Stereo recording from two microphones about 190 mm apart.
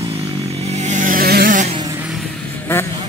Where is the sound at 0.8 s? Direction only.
40° right (ahead or behind).